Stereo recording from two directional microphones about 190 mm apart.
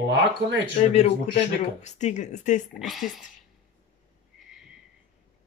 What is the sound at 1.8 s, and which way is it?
Speech, 40° left (ahead or behind).